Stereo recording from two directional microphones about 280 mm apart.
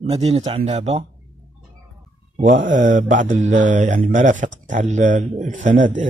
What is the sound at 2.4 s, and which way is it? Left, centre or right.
Speech, right.